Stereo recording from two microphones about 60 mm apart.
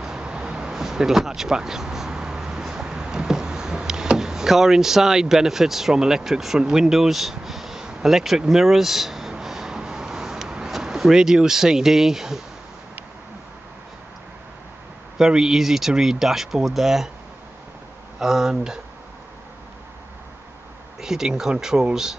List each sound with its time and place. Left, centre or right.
0.0 s a sound: centre
15.1 s speech: centre
18.2 s speech: centre
21.0 s speech: centre